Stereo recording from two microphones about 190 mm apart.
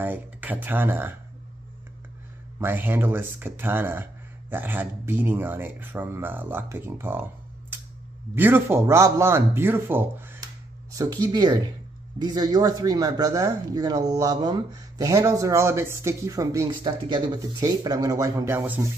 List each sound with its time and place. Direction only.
0.0 s speech: 10° right (ahead or behind)
2.6 s speech: 10° right (ahead or behind)
7.7 s a sound: 10° right (ahead or behind)
8.4 s speech: 10° right (ahead or behind)